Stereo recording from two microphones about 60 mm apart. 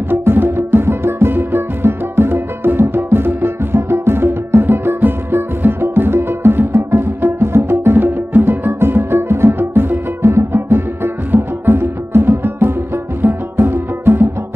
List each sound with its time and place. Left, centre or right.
0.1 s music: right